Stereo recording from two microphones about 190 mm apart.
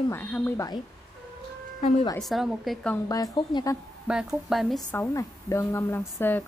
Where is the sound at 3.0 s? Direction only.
20° left (ahead or behind).